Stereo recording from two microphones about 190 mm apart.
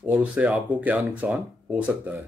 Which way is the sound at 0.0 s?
5° right (ahead or behind).